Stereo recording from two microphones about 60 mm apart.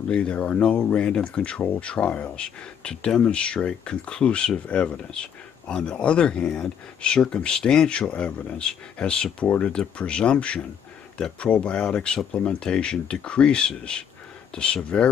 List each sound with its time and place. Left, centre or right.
0.1 s speech: centre